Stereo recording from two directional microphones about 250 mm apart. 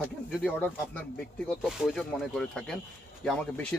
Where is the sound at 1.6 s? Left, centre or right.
Centre.